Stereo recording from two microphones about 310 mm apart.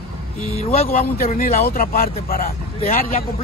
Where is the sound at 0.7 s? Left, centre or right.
Left.